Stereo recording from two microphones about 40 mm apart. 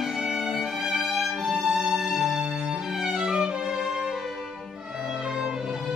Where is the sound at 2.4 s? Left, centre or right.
Right.